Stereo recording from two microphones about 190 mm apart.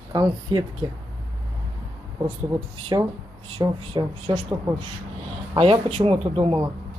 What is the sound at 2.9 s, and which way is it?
Speech, 20° right (ahead or behind).